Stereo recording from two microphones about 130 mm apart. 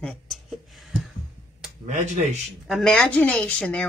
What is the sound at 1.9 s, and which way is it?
Speech, 65° right (ahead or behind).